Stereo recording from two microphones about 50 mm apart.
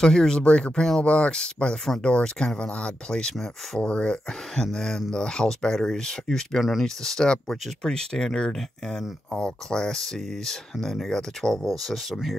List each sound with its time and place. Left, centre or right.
0.0 s speech: centre
1.0 s speech: left
4.3 s speech: centre
6.6 s speech: centre
7.0 s speech: centre